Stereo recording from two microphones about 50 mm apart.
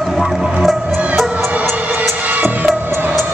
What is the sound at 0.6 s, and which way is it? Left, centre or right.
Music, centre.